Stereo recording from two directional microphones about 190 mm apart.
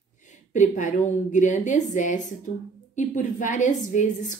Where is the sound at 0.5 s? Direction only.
40° left (ahead or behind).